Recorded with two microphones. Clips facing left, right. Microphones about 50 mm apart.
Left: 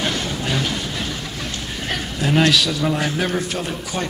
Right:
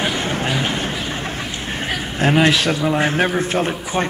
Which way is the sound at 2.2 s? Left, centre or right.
Right.